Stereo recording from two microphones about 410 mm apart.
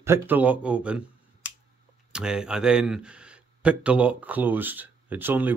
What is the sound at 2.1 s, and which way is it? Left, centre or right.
Speech, centre.